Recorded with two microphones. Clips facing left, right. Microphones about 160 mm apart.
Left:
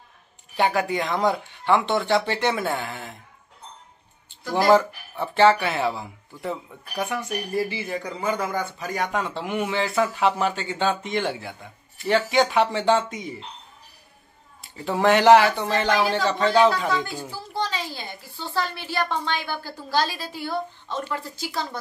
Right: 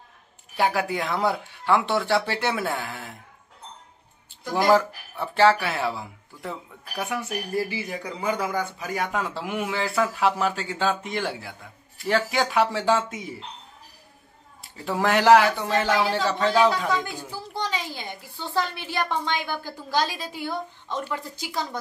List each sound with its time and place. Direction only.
0.6 s speech: 5° right (ahead or behind)
4.5 s speech: centre (ahead or behind)
14.6 s speech: centre (ahead or behind)
17.6 s a woman's voice: 15° right (ahead or behind)